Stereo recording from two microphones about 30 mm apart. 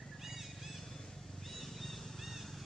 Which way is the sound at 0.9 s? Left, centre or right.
Centre.